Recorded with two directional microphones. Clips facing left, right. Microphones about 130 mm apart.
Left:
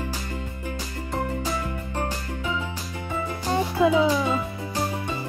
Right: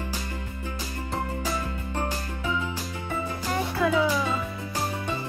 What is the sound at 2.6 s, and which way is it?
Music, 15° left (ahead or behind).